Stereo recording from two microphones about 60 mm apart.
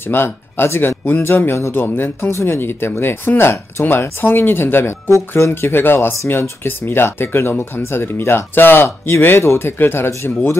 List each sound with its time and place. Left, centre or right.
0.1 s speech: left
5.5 s speech: left
8.8 s speech: left